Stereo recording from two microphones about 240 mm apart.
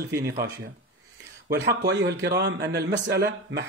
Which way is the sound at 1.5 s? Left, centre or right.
Right.